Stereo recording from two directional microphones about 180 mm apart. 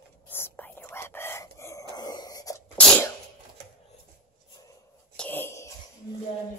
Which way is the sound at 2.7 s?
5° left (ahead or behind).